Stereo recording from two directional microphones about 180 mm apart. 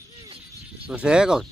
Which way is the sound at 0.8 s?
5° right (ahead or behind).